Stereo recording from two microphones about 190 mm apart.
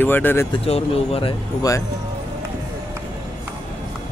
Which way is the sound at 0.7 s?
30° left (ahead or behind).